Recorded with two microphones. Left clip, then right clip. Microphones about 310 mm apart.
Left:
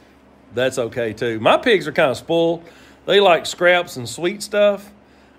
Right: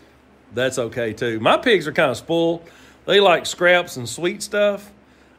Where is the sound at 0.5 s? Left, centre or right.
Centre.